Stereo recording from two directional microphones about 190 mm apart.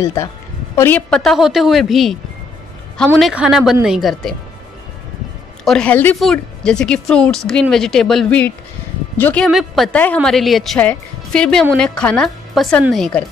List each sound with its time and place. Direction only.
0.0 s a woman's voice: 15° left (ahead or behind)
5.7 s a woman's voice: 5° left (ahead or behind)